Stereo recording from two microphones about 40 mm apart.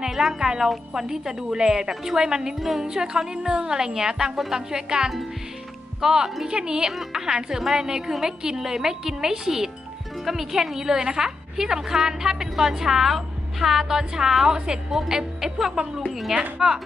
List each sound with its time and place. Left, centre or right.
0.0 s a woman's voice: centre
6.9 s a woman's voice: centre
16.5 s a woman's voice: centre